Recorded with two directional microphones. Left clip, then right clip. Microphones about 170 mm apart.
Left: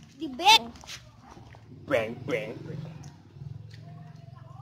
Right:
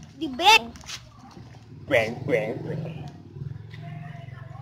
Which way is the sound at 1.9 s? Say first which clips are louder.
Right 5 dB; 25° left (ahead or behind).